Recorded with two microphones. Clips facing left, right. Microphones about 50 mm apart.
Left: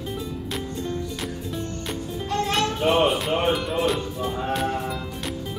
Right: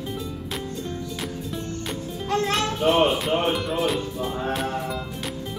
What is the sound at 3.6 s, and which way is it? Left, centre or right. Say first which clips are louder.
Music: even; centre.